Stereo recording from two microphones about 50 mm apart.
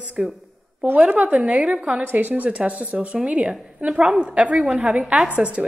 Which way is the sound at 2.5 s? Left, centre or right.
Right.